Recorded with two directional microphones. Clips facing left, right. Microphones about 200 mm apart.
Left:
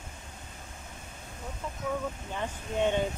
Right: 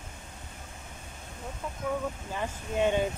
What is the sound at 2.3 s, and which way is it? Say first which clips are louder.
Speech: right 1 dB; 5° right (ahead or behind).